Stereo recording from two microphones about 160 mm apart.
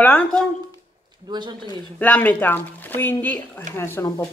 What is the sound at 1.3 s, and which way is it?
Speech, 30° right (ahead or behind).